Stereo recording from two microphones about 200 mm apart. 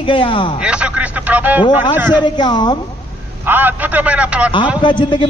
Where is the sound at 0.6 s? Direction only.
5° right (ahead or behind).